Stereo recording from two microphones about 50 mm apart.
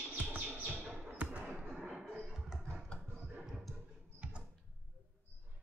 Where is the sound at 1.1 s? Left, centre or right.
Right.